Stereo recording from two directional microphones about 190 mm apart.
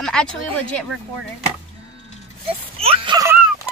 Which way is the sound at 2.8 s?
30° right (ahead or behind).